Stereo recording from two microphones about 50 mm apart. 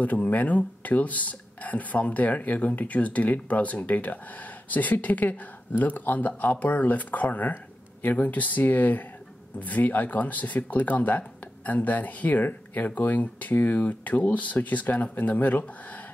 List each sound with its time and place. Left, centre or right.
0.0 s speech: left